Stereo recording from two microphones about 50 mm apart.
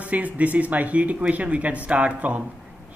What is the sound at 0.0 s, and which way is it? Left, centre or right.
A woman's voice, right.